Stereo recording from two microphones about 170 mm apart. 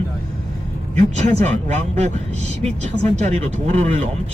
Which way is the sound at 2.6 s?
40° right (ahead or behind).